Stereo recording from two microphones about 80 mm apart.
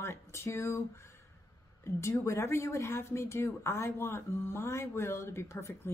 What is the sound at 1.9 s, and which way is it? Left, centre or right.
Speech, left.